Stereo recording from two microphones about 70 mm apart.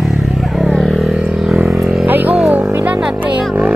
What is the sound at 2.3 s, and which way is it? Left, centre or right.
Speech, centre.